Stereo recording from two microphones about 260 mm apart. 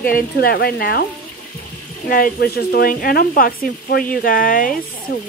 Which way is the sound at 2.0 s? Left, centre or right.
Left.